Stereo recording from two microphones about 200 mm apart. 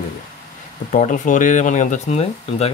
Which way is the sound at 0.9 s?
40° left (ahead or behind).